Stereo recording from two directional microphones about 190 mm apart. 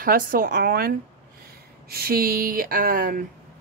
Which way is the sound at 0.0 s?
50° right (ahead or behind).